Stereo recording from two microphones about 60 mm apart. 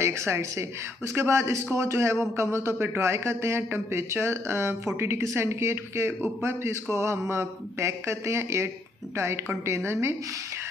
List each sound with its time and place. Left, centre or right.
0.0 s speech: right